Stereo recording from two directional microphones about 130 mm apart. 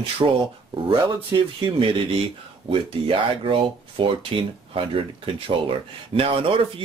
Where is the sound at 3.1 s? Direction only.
45° right (ahead or behind).